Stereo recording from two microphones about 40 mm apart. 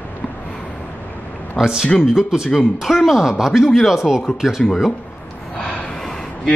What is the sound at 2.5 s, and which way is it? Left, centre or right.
Speech, centre.